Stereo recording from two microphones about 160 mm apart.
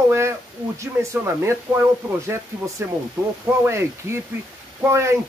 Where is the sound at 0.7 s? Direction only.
15° right (ahead or behind).